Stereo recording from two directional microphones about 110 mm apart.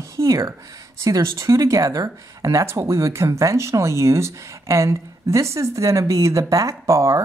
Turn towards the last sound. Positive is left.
turn(degrees=-30)  # may be behind; listen again after turning